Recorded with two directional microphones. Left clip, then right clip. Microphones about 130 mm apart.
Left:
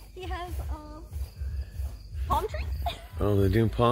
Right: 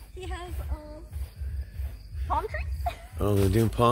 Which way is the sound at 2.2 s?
70° left (ahead or behind).